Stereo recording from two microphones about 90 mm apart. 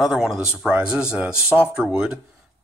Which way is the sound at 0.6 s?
10° right (ahead or behind).